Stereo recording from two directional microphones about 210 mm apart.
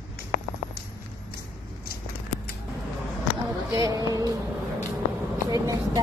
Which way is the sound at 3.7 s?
15° right (ahead or behind).